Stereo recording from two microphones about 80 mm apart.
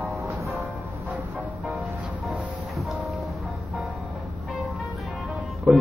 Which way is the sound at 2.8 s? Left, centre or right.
Centre.